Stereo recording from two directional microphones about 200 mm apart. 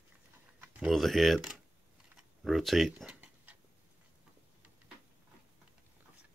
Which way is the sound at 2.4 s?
Centre (ahead or behind).